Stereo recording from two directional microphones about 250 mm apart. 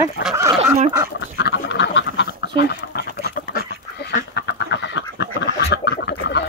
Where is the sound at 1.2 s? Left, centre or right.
Left.